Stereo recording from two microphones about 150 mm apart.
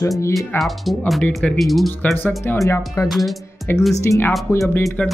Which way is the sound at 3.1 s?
Centre (ahead or behind).